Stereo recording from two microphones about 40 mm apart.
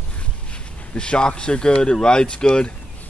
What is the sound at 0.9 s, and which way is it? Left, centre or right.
Speech, left.